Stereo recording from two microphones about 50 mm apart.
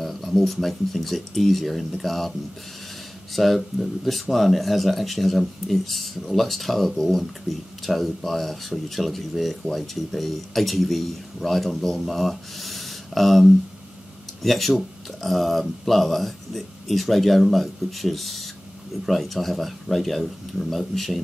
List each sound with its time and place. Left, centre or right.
0.0 s speech: centre
3.3 s speech: centre